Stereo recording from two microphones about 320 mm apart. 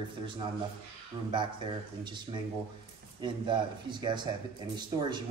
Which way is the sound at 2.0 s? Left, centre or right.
Centre.